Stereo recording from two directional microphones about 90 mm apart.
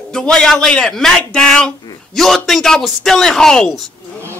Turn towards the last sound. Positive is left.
turn(degrees=5)  # may be behind; listen again after turning